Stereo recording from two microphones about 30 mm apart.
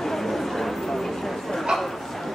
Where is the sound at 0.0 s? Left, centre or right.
Centre.